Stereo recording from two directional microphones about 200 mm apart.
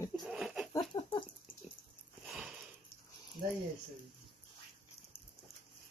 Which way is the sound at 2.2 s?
5° right (ahead or behind).